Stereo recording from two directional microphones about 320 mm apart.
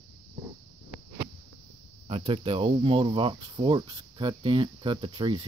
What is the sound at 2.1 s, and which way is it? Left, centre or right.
Speech, centre.